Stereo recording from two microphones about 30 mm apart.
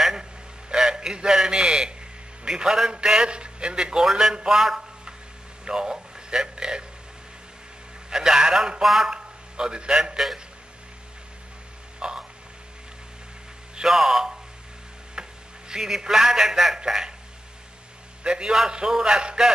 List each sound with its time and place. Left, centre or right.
0.0 s a sound: centre
0.7 s a man's voice: centre
3.3 s a man's voice: right
4.0 s a man's voice: centre
5.7 s a sound: right
8.1 s a man's voice: right
8.8 s a man's voice: centre
9.1 s a man's voice: right
12.0 s a sound: right
13.8 s a man's voice: centre
15.2 s a sound: right
15.7 s a man's voice: centre
18.2 s a man's voice: right